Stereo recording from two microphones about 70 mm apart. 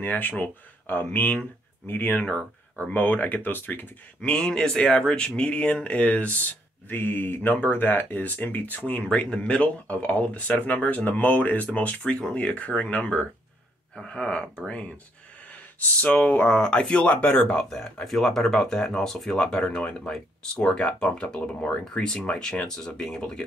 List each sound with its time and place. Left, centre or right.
0.0 s speech: left
4.2 s speech: centre
15.8 s speech: centre